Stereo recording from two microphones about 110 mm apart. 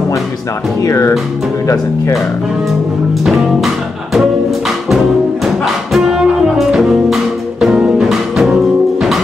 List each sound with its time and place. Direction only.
0.8 s speech: 30° left (ahead or behind)
3.3 s music: centre (ahead or behind)